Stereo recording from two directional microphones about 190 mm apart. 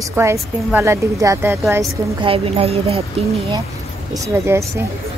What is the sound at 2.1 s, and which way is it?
Speech, 30° right (ahead or behind).